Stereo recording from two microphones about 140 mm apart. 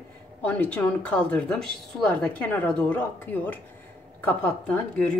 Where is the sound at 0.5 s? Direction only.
10° left (ahead or behind).